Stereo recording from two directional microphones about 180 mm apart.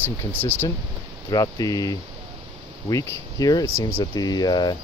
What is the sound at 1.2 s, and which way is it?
Speech, 20° left (ahead or behind).